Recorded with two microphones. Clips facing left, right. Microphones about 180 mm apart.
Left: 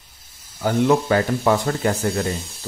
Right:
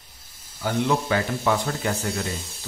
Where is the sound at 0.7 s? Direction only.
45° left (ahead or behind).